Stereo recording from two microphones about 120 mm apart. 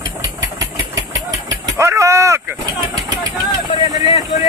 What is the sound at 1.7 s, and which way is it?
Vehicle, 25° right (ahead or behind).